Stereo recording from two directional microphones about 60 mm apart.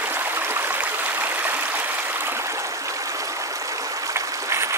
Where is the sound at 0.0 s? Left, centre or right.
Right.